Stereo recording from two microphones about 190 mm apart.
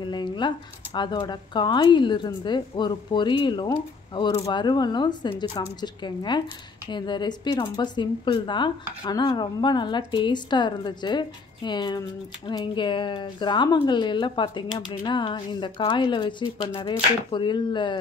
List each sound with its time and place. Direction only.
0.0 s speech: 25° left (ahead or behind)